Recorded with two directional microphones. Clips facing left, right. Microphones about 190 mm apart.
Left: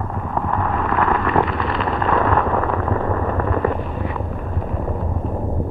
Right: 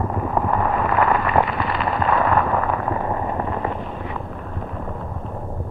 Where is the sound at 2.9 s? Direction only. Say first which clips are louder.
Left 3 dB; 20° right (ahead or behind).